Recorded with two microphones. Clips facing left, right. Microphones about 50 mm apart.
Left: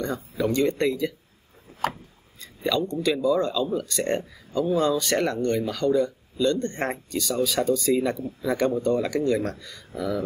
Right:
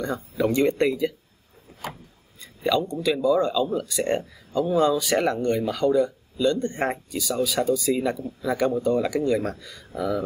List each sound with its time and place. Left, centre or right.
0.4 s speech: centre
1.8 s a sound: left
2.4 s speech: centre